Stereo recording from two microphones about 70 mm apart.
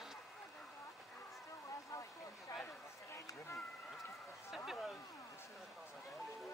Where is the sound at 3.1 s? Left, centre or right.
Left.